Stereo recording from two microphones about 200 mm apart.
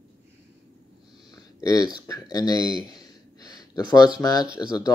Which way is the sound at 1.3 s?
15° left (ahead or behind).